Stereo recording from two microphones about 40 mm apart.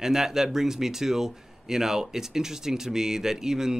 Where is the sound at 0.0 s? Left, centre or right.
Centre.